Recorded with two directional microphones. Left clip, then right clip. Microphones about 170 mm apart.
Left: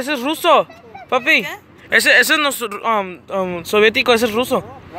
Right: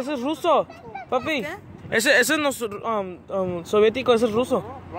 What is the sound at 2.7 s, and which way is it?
Speech, 15° left (ahead or behind).